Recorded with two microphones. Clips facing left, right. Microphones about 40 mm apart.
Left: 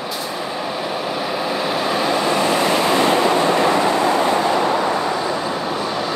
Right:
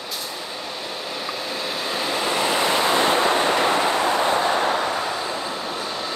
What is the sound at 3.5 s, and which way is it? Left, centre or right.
Vehicle, left.